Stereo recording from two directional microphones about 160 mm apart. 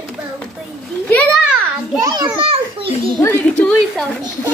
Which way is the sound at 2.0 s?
25° right (ahead or behind).